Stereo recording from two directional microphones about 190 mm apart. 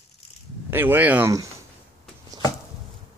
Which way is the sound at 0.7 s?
10° right (ahead or behind).